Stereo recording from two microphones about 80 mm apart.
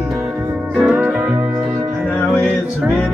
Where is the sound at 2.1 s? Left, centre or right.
Left.